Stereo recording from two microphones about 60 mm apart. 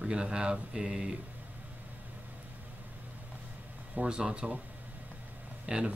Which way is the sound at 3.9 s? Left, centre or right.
Centre.